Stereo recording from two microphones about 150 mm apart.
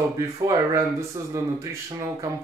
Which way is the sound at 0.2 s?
20° right (ahead or behind).